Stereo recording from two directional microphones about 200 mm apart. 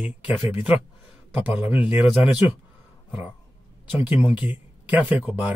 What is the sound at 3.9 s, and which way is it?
Speech, 10° right (ahead or behind).